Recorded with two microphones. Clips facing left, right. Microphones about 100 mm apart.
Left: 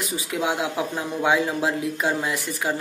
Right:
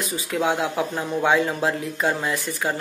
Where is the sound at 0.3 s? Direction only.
15° left (ahead or behind).